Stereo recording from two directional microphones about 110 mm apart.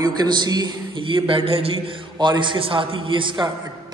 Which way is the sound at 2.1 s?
45° right (ahead or behind).